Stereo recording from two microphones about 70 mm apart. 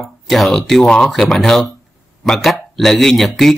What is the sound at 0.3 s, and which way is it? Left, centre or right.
Speech, centre.